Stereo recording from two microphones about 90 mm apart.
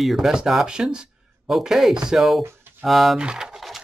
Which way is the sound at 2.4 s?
25° right (ahead or behind).